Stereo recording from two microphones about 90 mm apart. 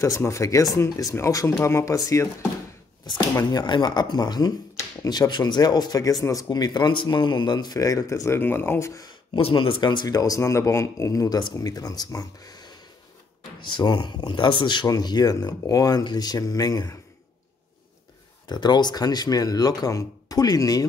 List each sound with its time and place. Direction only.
0.0 s speech: 35° left (ahead or behind)
3.1 s speech: 50° left (ahead or behind)
5.3 s speech: 50° left (ahead or behind)
8.4 s speech: 25° left (ahead or behind)
9.4 s speech: 80° left; by 10.0 s 60° left (ahead or behind)
10.0 s speech: 40° left (ahead or behind)
13.7 s speech: 55° left (ahead or behind)
18.5 s speech: 55° left (ahead or behind)